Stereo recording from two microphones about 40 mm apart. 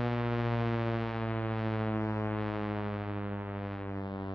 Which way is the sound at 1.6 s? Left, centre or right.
Centre.